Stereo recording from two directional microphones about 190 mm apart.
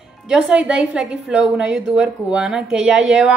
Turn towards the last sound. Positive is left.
turn(degrees=-5)  # may be behind; listen again after turning